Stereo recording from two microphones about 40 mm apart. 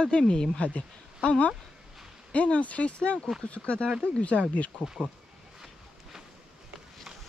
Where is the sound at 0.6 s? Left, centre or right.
Left.